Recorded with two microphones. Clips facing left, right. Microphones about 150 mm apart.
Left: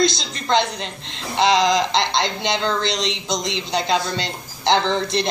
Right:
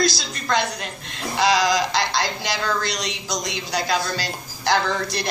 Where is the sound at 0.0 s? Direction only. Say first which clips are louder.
Left 2 dB; 25° left (ahead or behind).